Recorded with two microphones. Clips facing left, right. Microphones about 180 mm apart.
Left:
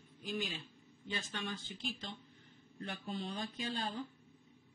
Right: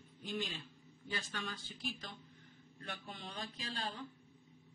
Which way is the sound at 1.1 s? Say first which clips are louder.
Left 2 dB; 25° left (ahead or behind).